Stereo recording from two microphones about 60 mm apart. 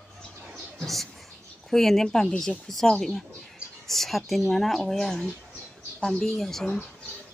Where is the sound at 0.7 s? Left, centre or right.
Centre.